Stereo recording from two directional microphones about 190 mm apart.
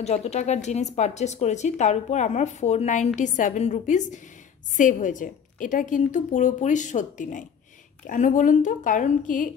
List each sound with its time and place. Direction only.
0.0 s a woman's voice: 35° left (ahead or behind)